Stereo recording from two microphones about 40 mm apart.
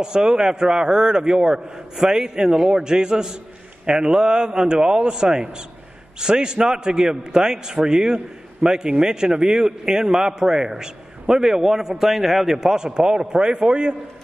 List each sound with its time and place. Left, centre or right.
0.0 s a man's voice: centre